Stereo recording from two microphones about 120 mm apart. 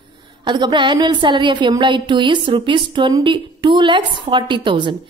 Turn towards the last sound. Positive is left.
turn(degrees=-40)  # may be behind; listen again after turning